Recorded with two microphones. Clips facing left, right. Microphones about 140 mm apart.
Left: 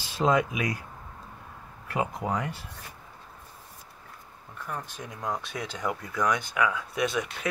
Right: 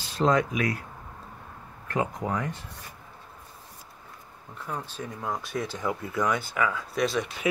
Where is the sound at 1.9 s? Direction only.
15° left (ahead or behind).